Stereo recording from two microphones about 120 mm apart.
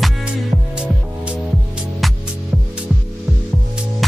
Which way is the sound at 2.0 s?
Centre (ahead or behind).